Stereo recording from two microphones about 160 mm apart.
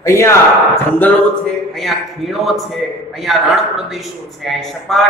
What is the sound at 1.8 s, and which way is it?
Speech, centre (ahead or behind).